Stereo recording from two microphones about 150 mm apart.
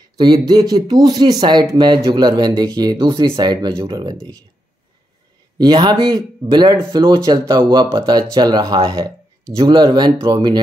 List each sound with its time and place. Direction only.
0.2 s speech: 30° right (ahead or behind)
5.6 s speech: 30° right (ahead or behind)